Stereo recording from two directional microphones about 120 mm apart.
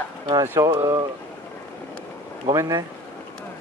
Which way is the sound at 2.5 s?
25° right (ahead or behind).